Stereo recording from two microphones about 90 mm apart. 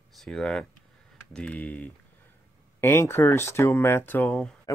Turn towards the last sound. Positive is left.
turn(degrees=40)  # may be behind; listen again after turning